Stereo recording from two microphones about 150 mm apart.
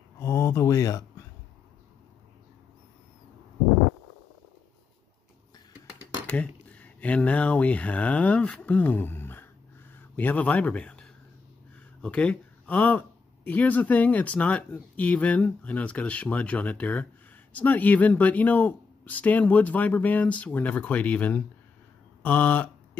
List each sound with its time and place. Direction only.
0.2 s speech: 20° left (ahead or behind)
6.2 s speech: 10° left (ahead or behind)